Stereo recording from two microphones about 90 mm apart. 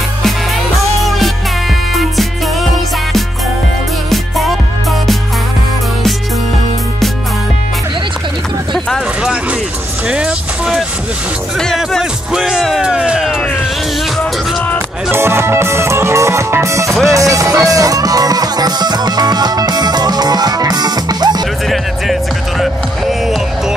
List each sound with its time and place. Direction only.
4.1 s music: centre (ahead or behind)
8.7 s a sound: 5° left (ahead or behind)
9.2 s music: 10° right (ahead or behind)
12.0 s music: 5° right (ahead or behind)
15.0 s music: 30° right (ahead or behind); by 21.4 s 50° right (ahead or behind)
22.6 s music: 5° right (ahead or behind)